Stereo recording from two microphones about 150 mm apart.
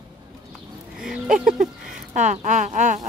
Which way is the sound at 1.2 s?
60° right (ahead or behind).